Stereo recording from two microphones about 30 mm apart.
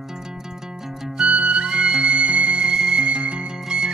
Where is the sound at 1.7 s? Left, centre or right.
Right.